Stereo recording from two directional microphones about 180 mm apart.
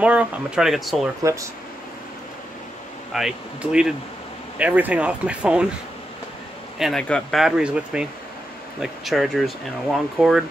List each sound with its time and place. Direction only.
0.0 s speech: 5° right (ahead or behind)
1.2 s speech: 15° right (ahead or behind)
3.1 s speech: centre (ahead or behind)
6.8 s speech: 5° left (ahead or behind)